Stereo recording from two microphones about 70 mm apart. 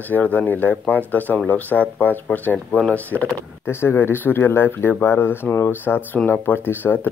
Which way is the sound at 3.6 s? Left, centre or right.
Left.